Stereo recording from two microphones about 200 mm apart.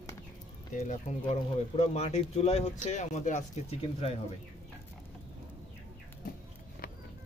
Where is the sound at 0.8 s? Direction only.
35° left (ahead or behind).